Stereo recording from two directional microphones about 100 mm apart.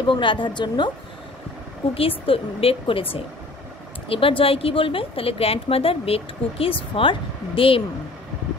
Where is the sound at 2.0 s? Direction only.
70° left (ahead or behind).